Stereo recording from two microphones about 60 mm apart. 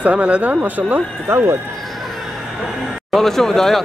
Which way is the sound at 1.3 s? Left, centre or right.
Right.